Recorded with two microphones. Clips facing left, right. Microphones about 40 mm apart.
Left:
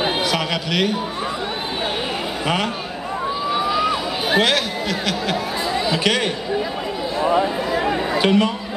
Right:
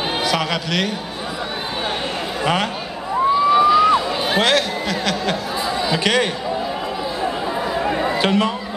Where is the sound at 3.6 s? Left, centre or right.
Centre.